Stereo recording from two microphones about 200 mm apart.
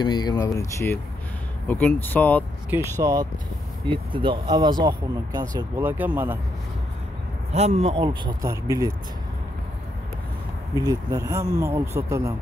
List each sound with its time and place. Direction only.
0.0 s speech: 20° left (ahead or behind)
2.7 s speech: 15° right (ahead or behind)
7.5 s speech: 35° right (ahead or behind); by 8.9 s 15° right (ahead or behind)
10.7 s speech: 20° right (ahead or behind)